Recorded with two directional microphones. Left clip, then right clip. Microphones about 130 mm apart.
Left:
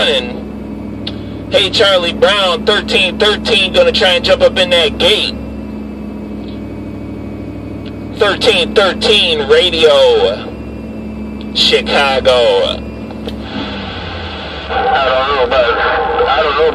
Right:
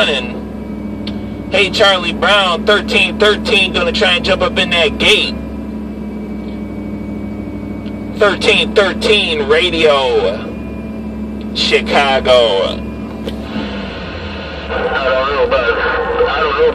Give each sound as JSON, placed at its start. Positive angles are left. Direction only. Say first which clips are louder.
{"t": 1.5, "sound": "speech", "louder": "left 1 dB", "side_deg": 35}
{"t": 8.3, "sound": "speech", "louder": "left 2 dB", "side_deg": 35}
{"t": 11.5, "sound": "speech", "louder": "left 2 dB", "side_deg": 35}
{"t": 14.7, "sound": "honk", "louder": "left 3 dB", "side_deg": 40}